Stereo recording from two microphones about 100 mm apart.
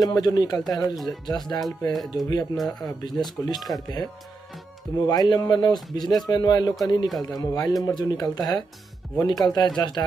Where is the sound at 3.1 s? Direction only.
Centre (ahead or behind).